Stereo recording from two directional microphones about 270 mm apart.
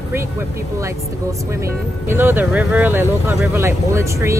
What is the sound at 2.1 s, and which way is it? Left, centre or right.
Speech, centre.